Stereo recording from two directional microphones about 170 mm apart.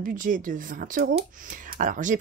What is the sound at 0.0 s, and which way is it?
Speech, 55° right (ahead or behind).